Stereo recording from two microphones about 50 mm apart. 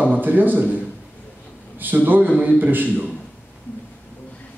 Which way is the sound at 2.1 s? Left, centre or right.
Right.